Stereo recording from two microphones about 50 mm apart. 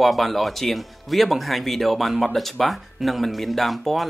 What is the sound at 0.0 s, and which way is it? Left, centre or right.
Speech, centre.